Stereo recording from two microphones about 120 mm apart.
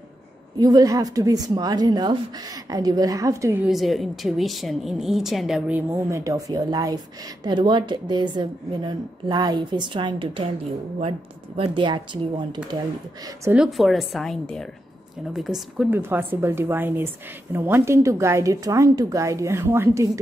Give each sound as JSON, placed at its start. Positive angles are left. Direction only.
{"t": 0.6, "sound": "a woman's voice", "side_deg": -30}
{"t": 3.6, "sound": "a woman's voice", "side_deg": 0}
{"t": 5.7, "sound": "a woman's voice", "side_deg": -15}
{"t": 13.7, "sound": "a woman's voice", "side_deg": 0}
{"t": 15.9, "sound": "a woman's voice", "side_deg": -15}